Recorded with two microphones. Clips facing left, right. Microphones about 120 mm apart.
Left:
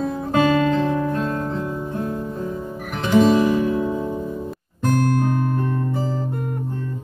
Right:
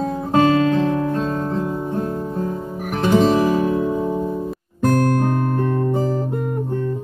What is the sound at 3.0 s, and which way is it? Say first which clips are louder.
Music: even; 35° right (ahead or behind).